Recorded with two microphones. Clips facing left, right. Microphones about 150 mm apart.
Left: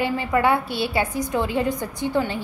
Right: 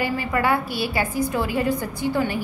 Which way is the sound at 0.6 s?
25° left (ahead or behind).